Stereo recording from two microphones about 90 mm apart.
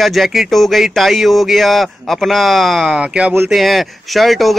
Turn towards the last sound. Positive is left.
turn(degrees=0)  # may be behind; listen again after turning